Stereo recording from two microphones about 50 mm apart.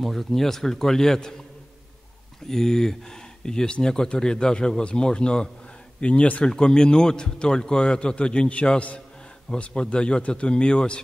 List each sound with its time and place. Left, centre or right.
0.0 s speech: centre
2.4 s speech: centre; by 6.4 s left
6.4 s speech: centre